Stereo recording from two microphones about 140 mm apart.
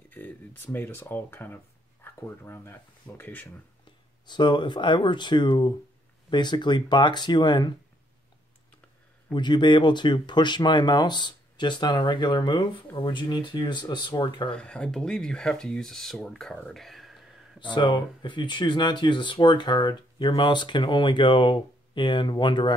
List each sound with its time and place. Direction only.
0.1 s speech: 15° left (ahead or behind)
4.3 s speech: 35° left (ahead or behind)
9.3 s speech: 35° left (ahead or behind)
14.5 s speech: 5° left (ahead or behind)
17.7 s speech: 35° left (ahead or behind)